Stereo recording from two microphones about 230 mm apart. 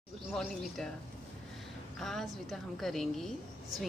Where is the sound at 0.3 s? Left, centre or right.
Centre.